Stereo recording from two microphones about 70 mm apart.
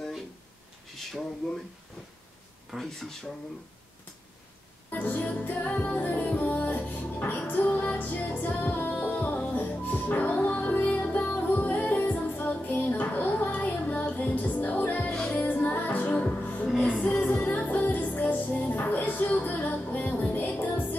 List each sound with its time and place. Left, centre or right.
2.7 s speech: centre
4.9 s music: left
15.1 s music: centre
15.4 s music: left